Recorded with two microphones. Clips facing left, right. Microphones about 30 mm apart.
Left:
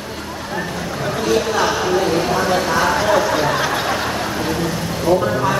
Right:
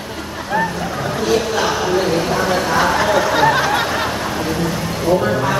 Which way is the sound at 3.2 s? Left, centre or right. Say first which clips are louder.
Right 3 dB; right.